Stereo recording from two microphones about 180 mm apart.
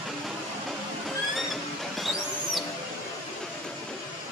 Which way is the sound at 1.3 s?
Centre (ahead or behind).